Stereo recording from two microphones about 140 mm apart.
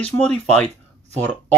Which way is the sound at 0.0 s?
10° left (ahead or behind).